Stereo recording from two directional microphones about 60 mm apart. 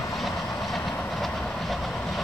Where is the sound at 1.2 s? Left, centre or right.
Centre.